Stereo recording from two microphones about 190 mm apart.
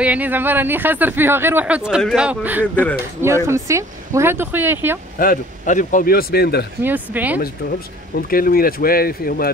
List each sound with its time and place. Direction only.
0.0 s speech: 10° right (ahead or behind)
5.2 s a man's voice: 45° left (ahead or behind)
6.8 s speech: 10° right (ahead or behind)
8.3 s a man's voice: 50° left (ahead or behind)